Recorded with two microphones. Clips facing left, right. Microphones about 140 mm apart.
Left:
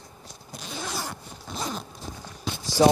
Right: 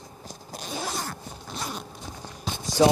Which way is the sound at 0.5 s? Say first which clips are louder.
Right 3 dB; 40° right (ahead or behind).